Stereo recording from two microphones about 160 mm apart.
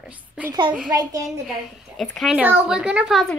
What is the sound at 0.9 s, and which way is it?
Speech, 20° right (ahead or behind).